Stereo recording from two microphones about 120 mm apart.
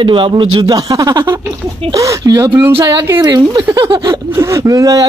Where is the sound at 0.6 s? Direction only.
30° right (ahead or behind).